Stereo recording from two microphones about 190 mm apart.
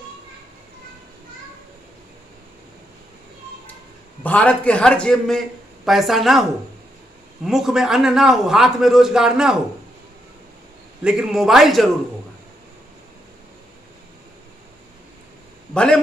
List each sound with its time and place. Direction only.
4.2 s a man's voice: 5° left (ahead or behind)
7.4 s a man's voice: centre (ahead or behind)
11.0 s a man's voice: 5° right (ahead or behind)
15.7 s a man's voice: 5° left (ahead or behind)